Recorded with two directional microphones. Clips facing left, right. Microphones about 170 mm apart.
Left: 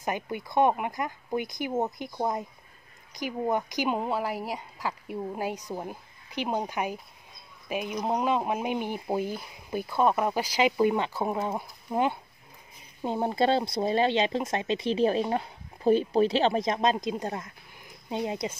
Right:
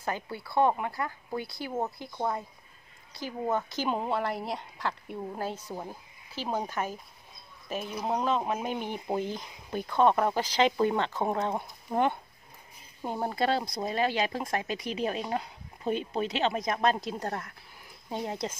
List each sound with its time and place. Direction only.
0.0 s speech: 15° left (ahead or behind)
13.0 s speech: 20° left (ahead or behind)